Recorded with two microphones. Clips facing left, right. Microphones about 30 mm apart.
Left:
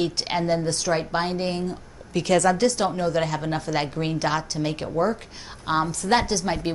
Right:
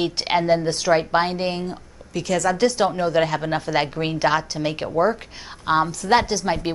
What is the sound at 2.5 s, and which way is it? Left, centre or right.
A woman's voice, centre.